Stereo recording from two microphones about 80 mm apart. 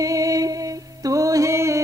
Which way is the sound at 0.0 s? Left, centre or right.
Right.